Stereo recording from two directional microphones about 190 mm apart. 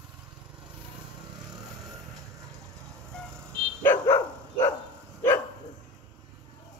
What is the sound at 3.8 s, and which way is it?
Dog, 15° left (ahead or behind).